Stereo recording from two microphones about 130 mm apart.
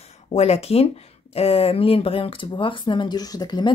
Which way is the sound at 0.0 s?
55° left (ahead or behind).